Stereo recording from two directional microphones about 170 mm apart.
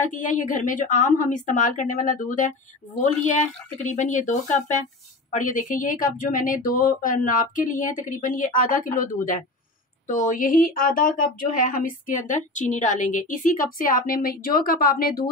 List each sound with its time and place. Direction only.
0.0 s speech: 50° left (ahead or behind)
3.9 s speech: 45° left (ahead or behind)